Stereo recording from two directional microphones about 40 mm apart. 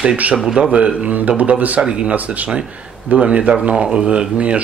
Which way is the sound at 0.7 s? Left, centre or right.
Right.